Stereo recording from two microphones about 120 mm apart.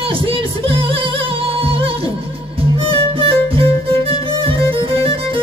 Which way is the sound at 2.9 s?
50° right (ahead or behind).